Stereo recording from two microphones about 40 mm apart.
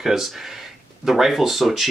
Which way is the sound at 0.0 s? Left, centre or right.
Centre.